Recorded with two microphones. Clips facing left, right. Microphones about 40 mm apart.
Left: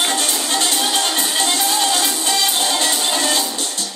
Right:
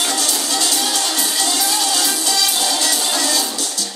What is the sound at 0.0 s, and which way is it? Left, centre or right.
Music, left.